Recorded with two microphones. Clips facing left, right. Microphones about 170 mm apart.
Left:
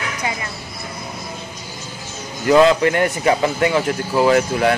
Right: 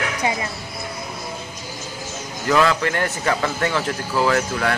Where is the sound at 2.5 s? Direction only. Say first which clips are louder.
Left 6 dB; 20° left (ahead or behind).